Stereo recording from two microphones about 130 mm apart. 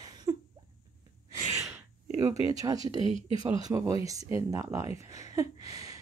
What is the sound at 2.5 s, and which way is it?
Speech, 25° right (ahead or behind).